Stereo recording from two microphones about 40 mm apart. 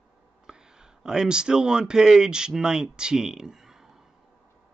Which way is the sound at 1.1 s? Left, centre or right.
Centre.